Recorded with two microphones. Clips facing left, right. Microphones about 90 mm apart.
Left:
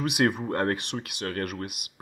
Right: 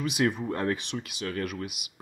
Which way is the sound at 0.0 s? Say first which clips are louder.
Left 2 dB; 60° left (ahead or behind).